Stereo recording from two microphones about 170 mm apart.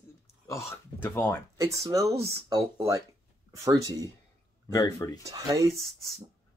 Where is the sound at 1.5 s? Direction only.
20° right (ahead or behind).